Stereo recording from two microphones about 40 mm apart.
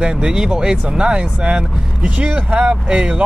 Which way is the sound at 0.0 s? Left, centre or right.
Centre.